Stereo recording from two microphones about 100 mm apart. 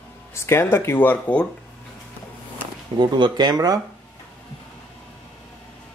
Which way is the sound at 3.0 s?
50° right (ahead or behind).